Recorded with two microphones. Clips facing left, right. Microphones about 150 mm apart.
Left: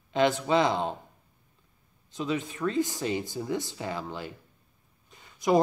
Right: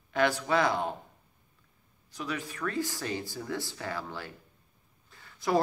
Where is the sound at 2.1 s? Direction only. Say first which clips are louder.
Left 5 dB; 20° left (ahead or behind).